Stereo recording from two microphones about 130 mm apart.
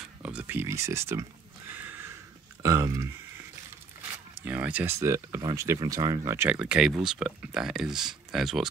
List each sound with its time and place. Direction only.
0.0 s a sound: 10° right (ahead or behind)
1.7 s horse: 15° right (ahead or behind)
2.6 s speech: 25° right (ahead or behind)
4.5 s speech: 10° right (ahead or behind); by 6.3 s 30° right (ahead or behind)
6.3 s speech: 10° right (ahead or behind)